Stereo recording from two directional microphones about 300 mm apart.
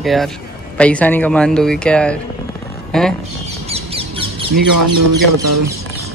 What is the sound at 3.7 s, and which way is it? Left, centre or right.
Bird, centre.